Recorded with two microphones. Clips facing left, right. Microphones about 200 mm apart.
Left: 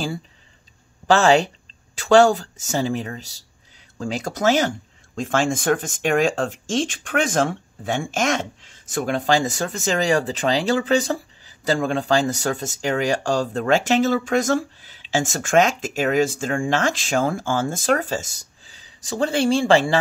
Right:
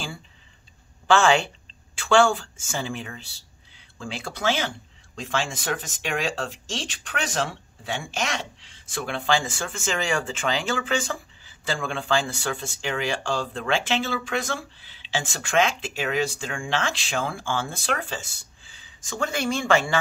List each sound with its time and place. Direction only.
1.0 s speech: 40° left (ahead or behind)